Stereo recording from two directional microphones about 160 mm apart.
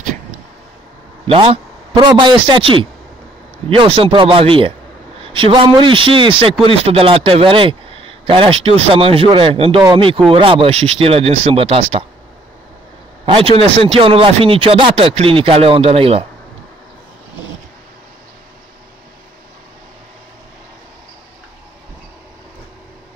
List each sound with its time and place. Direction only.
1.2 s a man's voice: 35° right (ahead or behind)
13.2 s a man's voice: 35° right (ahead or behind)